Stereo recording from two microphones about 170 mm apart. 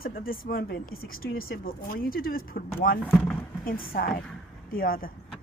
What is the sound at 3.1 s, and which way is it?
Speech, 5° left (ahead or behind).